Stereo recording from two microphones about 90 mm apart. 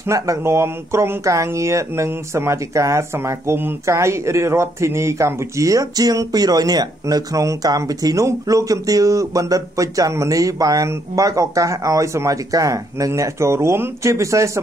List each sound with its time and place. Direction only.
0.0 s speech: 35° right (ahead or behind)